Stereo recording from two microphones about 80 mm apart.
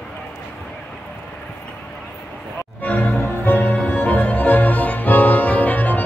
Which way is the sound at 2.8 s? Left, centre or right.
Centre.